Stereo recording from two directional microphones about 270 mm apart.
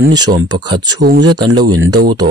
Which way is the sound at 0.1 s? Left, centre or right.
Centre.